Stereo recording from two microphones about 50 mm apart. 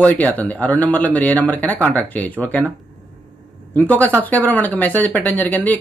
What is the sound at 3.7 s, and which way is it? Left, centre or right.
Speech, left.